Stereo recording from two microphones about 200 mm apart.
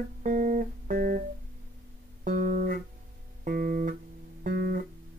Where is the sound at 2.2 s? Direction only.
45° right (ahead or behind).